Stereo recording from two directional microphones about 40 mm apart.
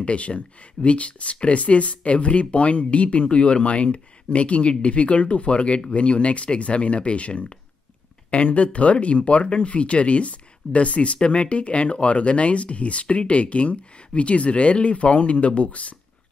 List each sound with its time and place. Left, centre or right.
0.0 s speech: left